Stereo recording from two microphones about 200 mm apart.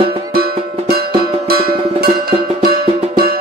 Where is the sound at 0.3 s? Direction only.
50° right (ahead or behind).